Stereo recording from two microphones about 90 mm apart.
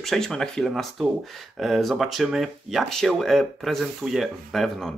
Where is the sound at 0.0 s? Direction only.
5° left (ahead or behind).